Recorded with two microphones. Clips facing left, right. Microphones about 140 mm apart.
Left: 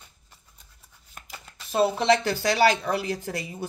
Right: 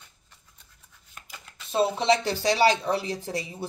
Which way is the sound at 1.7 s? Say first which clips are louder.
Left 1 dB; 25° right (ahead or behind).